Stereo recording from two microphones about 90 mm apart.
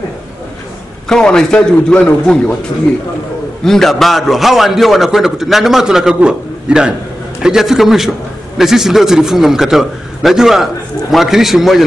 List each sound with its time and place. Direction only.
1.0 s a man's voice: 10° left (ahead or behind)
3.6 s a man's voice: 5° left (ahead or behind)